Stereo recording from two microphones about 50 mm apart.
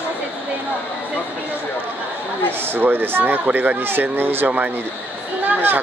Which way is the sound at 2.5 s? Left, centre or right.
Right.